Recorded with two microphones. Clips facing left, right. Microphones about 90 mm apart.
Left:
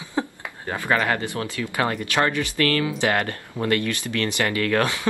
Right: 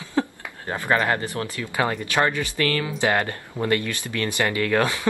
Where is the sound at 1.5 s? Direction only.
20° right (ahead or behind).